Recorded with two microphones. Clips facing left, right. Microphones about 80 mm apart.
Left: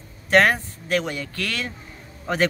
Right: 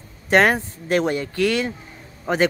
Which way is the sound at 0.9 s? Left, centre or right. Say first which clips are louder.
Right 4 dB; right.